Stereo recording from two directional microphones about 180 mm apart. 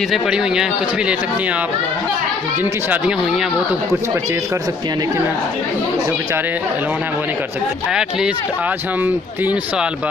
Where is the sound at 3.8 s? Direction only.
15° right (ahead or behind).